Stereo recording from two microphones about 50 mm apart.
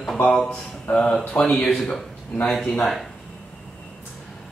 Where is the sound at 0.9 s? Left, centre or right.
Left.